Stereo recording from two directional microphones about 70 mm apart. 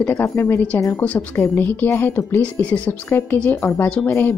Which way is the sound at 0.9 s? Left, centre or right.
Left.